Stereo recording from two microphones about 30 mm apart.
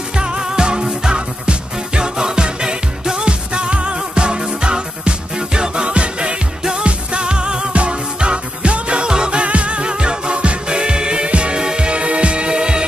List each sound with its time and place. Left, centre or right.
0.2 s music: right